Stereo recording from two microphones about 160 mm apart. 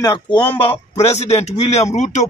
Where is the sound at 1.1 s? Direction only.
40° left (ahead or behind).